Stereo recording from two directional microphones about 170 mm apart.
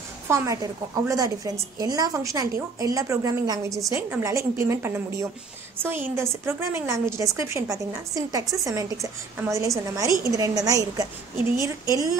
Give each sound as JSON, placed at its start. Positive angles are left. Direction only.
{"t": 0.3, "sound": "a woman's voice", "side_deg": -20}